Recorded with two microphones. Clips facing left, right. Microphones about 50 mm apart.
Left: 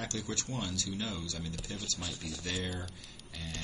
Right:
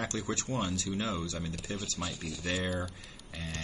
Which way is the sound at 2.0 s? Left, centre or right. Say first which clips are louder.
Right 3 dB; centre.